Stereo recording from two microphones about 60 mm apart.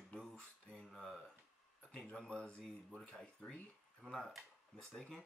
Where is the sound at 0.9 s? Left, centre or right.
Centre.